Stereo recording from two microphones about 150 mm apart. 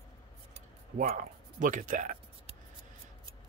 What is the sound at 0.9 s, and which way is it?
Speech, 50° right (ahead or behind).